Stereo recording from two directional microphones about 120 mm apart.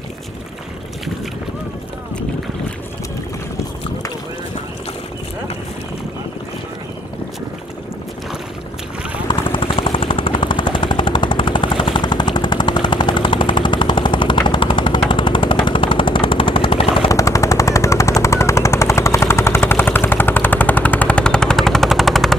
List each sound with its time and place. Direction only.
9.3 s vehicle: 45° left (ahead or behind)
17.1 s machine gun: 30° left (ahead or behind); by 22.3 s centre (ahead or behind)